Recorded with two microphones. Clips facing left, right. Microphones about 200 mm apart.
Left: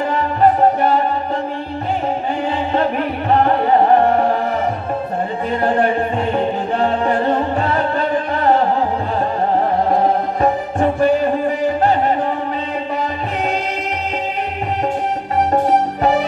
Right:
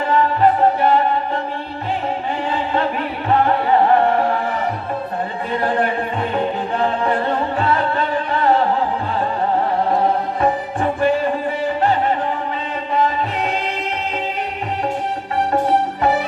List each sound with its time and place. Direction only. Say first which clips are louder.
0.4 s music: left 4 dB; 40° left (ahead or behind)
6.8 s music: left 2 dB; 35° left (ahead or behind)
10.4 s music: left 3 dB; 35° left (ahead or behind)
16.0 s music: left 2 dB; 35° left (ahead or behind)